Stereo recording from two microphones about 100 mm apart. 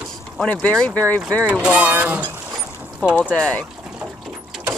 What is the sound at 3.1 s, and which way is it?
Speech, 15° left (ahead or behind).